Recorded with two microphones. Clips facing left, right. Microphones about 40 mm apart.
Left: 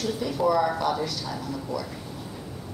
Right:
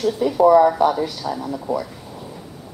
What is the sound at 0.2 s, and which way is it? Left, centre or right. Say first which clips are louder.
Speech: right 11 dB; right.